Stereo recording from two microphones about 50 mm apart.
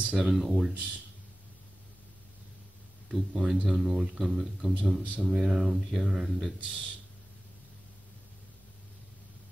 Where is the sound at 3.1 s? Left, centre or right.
Centre.